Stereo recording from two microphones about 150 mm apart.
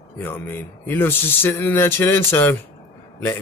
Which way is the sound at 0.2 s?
15° left (ahead or behind).